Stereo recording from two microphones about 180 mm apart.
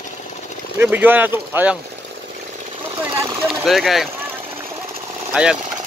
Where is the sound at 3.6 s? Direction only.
Centre (ahead or behind).